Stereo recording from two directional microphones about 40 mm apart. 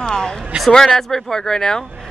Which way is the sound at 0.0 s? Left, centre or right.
Centre.